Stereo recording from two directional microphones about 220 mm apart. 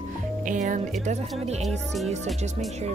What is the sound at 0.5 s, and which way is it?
Speech, 35° right (ahead or behind).